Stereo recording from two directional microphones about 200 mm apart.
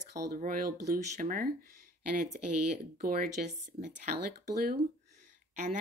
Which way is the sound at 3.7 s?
35° right (ahead or behind).